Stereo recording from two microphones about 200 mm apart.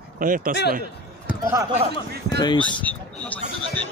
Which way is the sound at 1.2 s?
10° right (ahead or behind).